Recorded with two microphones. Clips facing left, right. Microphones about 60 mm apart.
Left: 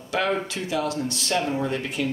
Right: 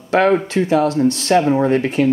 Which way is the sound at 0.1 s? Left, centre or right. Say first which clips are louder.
Right 10 dB; right.